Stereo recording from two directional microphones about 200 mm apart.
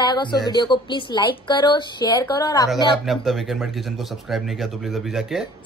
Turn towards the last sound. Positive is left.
turn(degrees=0)  # may be behind; listen again after turning